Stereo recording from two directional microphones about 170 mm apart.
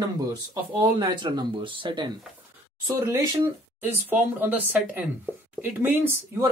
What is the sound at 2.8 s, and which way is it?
Speech, 15° right (ahead or behind).